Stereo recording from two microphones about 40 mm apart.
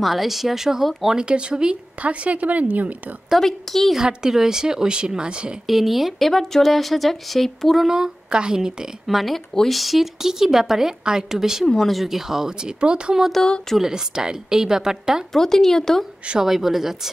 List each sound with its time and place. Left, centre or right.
0.0 s speech: centre
1.2 s speech: right
2.0 s a woman's voice: right
3.3 s speech: centre
3.9 s a woman's voice: centre
5.7 s speech: centre
7.8 s a woman's voice: centre
9.0 s a woman's voice: centre
11.6 s speech: centre
12.0 s a woman's voice: centre
15.3 s speech: centre
16.3 s a woman's voice: centre